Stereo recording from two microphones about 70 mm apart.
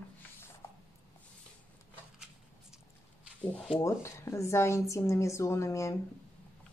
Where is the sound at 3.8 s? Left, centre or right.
Left.